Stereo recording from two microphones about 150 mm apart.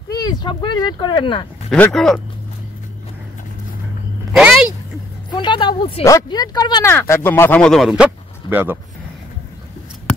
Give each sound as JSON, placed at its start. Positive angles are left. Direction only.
{"t": 0.1, "sound": "speech", "side_deg": 25}
{"t": 1.7, "sound": "speech", "side_deg": 5}
{"t": 4.3, "sound": "a sound", "side_deg": -5}
{"t": 5.3, "sound": "a woman's voice", "side_deg": 30}
{"t": 6.0, "sound": "speech", "side_deg": 25}
{"t": 6.9, "sound": "speech", "side_deg": 15}